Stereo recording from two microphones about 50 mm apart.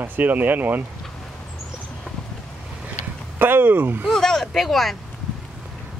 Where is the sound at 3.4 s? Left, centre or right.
Right.